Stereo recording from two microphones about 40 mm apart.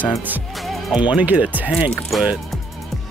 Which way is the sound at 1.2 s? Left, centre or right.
Right.